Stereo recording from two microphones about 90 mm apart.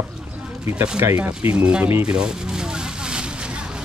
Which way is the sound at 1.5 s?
15° right (ahead or behind).